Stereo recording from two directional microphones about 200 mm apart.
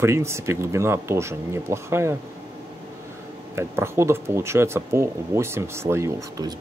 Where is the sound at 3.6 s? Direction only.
15° right (ahead or behind).